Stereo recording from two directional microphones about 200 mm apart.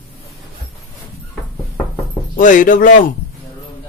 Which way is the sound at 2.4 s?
40° left (ahead or behind).